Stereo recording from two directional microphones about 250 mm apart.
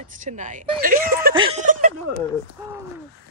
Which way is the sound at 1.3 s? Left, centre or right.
Right.